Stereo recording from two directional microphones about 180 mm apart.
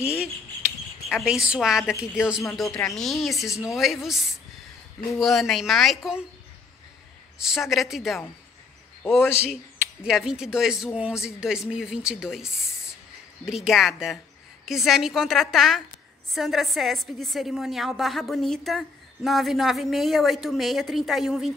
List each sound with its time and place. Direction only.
1.0 s a woman's voice: 5° right (ahead or behind)
3.4 s a woman's voice: 15° left (ahead or behind)
3.7 s a woman's voice: centre (ahead or behind)
5.2 s a woman's voice: centre (ahead or behind)
7.3 s a woman's voice: 5° right (ahead or behind)
9.0 s a man's voice: 10° left (ahead or behind)
10.0 s a woman's voice: 5° right (ahead or behind)